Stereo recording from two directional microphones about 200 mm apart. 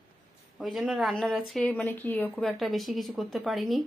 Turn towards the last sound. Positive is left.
turn(degrees=0)  # may be behind; listen again after turning